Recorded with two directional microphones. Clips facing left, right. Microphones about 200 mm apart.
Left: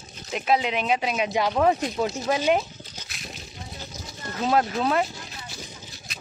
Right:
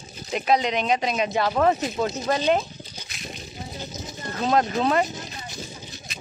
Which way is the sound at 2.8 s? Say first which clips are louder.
Right 2 dB; 10° right (ahead or behind).